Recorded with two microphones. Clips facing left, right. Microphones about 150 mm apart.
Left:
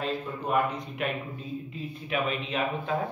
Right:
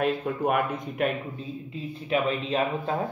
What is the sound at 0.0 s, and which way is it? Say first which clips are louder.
Speech: right 6 dB; 55° right (ahead or behind).